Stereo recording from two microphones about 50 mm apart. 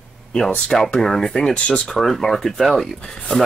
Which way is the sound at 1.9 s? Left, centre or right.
Centre.